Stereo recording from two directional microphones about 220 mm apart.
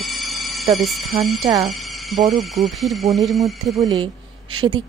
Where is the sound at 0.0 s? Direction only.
Centre (ahead or behind).